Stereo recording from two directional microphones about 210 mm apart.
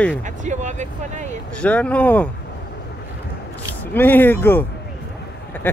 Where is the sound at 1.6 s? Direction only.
5° left (ahead or behind).